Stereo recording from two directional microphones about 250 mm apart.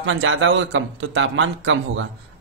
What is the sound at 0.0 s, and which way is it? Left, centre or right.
A man's voice, right.